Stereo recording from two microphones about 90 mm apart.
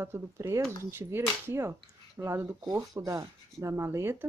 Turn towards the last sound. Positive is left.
turn(degrees=-25)  # may be behind; listen again after turning